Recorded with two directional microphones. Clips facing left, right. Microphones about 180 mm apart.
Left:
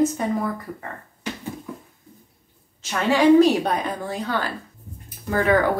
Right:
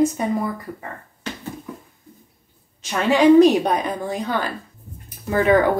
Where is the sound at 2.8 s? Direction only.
20° right (ahead or behind).